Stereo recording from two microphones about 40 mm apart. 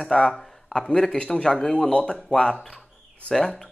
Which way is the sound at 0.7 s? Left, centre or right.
Centre.